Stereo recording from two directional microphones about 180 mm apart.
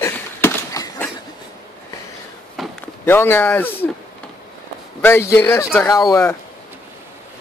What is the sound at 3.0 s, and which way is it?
Speech, 10° left (ahead or behind).